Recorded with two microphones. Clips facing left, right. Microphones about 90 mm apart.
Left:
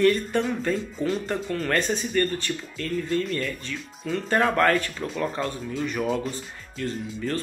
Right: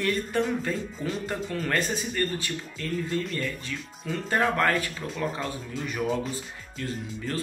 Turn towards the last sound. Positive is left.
turn(degrees=-5)  # may be behind; listen again after turning